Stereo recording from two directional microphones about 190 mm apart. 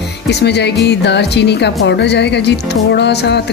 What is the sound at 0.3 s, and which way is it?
Speech, 60° left (ahead or behind).